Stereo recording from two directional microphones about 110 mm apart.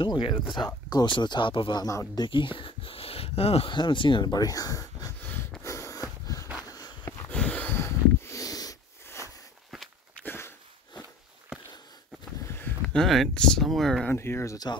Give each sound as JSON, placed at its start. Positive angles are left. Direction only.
{"t": 0.0, "sound": "speech", "side_deg": 40}
{"t": 1.9, "sound": "speech", "side_deg": 30}
{"t": 2.2, "sound": "speech", "side_deg": 50}
{"t": 3.7, "sound": "speech", "side_deg": 45}
{"t": 5.2, "sound": "snort", "side_deg": 20}
{"t": 6.7, "sound": "a sound", "side_deg": 30}
{"t": 7.2, "sound": "snort", "side_deg": 10}
{"t": 10.1, "sound": "a sound", "side_deg": 20}
{"t": 12.4, "sound": "a sound", "side_deg": 20}
{"t": 12.8, "sound": "speech", "side_deg": 5}
{"t": 14.1, "sound": "speech", "side_deg": 25}